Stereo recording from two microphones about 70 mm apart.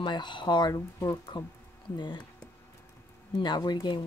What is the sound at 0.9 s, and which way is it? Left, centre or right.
Speech, left.